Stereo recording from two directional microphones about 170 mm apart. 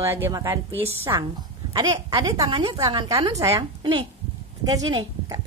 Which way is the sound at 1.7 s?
25° right (ahead or behind).